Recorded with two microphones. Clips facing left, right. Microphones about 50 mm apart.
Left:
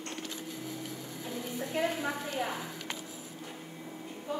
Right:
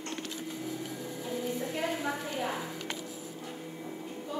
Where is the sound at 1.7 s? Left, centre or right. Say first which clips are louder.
Left 1 dB; centre.